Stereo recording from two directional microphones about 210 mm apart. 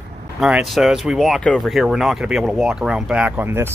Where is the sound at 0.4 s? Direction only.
5° right (ahead or behind).